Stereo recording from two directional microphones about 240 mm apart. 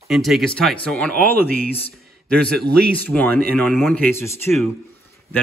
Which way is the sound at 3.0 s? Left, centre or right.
Centre.